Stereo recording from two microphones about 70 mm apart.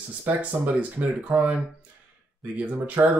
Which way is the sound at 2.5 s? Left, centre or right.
Right.